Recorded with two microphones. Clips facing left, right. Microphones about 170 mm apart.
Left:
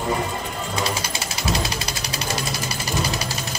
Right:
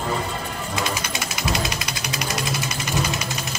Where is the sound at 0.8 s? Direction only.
35° left (ahead or behind).